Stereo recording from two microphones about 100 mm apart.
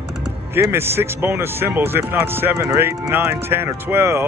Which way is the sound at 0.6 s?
25° right (ahead or behind).